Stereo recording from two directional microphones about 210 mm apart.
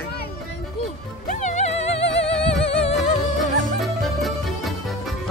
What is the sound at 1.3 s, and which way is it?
Music, 35° left (ahead or behind).